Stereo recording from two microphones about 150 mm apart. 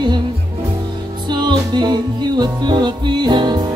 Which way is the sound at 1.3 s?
30° right (ahead or behind).